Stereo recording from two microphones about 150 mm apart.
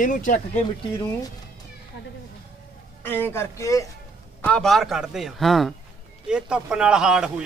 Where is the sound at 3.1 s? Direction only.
15° left (ahead or behind).